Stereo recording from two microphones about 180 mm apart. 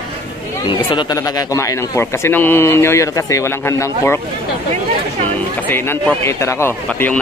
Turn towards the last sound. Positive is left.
turn(degrees=10)  # may be behind; listen again after turning